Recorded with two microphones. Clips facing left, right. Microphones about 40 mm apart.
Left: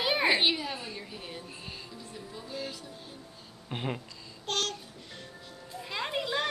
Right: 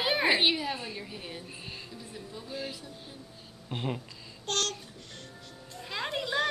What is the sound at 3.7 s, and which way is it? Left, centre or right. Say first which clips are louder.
Babbling: even; centre.